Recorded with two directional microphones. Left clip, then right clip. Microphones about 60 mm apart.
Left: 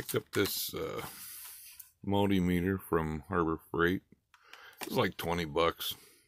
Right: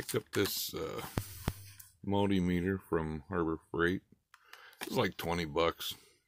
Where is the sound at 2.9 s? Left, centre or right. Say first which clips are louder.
Left 3 dB; left.